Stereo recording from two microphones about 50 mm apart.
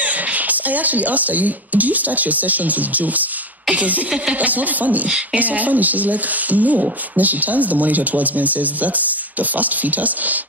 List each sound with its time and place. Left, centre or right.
0.0 s speech: right
5.0 s speech: right
5.4 s speech: right